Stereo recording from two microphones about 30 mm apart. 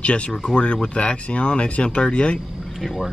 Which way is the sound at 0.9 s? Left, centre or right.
Left.